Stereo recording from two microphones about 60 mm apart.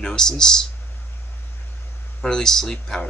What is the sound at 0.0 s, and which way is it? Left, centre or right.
Speech, centre.